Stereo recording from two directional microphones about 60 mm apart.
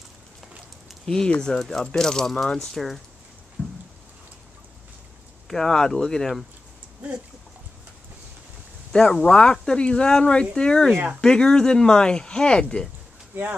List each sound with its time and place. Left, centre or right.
1.0 s speech: centre
3.6 s a sound: left
5.5 s speech: centre
8.9 s speech: centre